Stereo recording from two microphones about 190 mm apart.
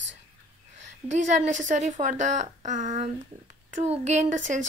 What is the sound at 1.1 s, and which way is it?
Speech, 40° right (ahead or behind).